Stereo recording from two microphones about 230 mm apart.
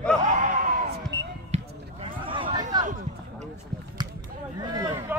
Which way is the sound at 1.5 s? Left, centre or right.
Right.